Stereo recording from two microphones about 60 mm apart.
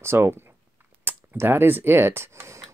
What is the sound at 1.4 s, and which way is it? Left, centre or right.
Speech, right.